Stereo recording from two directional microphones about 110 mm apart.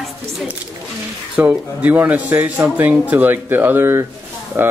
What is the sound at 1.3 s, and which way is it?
A man's voice, 15° right (ahead or behind).